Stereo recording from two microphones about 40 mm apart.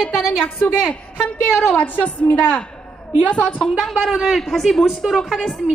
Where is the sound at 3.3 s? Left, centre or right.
Left.